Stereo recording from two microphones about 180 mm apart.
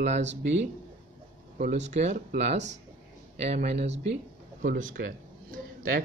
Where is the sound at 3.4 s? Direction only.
40° right (ahead or behind).